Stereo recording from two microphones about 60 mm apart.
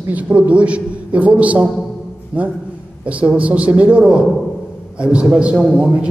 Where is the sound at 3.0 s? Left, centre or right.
Right.